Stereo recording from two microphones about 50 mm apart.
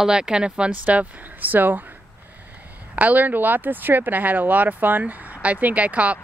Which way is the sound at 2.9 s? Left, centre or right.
Right.